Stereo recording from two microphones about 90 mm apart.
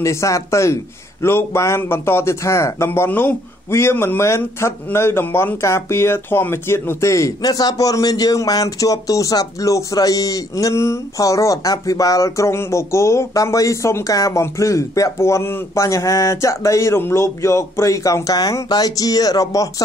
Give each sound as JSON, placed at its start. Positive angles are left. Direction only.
{"t": 0.0, "sound": "speech", "side_deg": 35}